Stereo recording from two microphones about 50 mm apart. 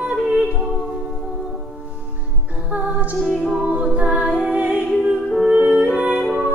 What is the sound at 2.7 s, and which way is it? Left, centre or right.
Music, right.